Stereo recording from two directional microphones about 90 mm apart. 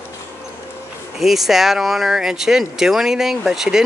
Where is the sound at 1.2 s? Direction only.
5° right (ahead or behind).